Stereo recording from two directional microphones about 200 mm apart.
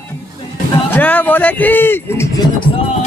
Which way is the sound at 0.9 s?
10° left (ahead or behind).